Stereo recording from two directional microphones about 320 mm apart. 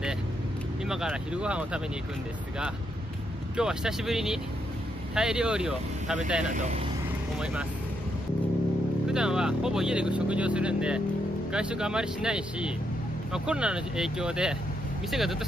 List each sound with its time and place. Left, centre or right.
0.8 s speech: centre
3.5 s speech: centre
6.5 s speech: right
9.0 s speech: centre